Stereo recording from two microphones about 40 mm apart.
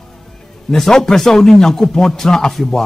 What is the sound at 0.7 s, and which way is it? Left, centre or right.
Speech, centre.